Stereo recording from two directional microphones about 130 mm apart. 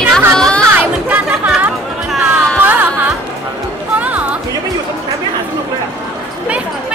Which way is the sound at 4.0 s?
10° right (ahead or behind).